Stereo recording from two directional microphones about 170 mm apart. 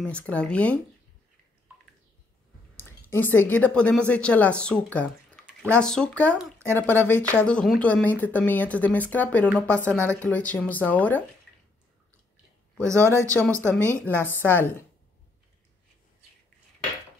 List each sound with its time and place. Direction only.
0.3 s speech: 5° left (ahead or behind)
2.8 s a woman's voice: 10° left (ahead or behind)
12.8 s speech: 15° right (ahead or behind)
13.1 s speech: 10° left (ahead or behind)